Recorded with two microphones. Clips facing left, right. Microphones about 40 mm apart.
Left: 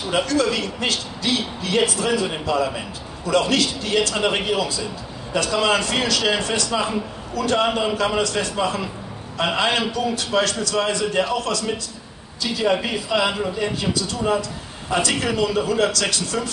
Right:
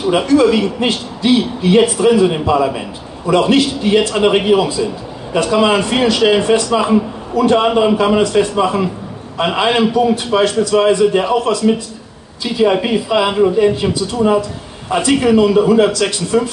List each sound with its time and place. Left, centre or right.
0.1 s a man's voice: right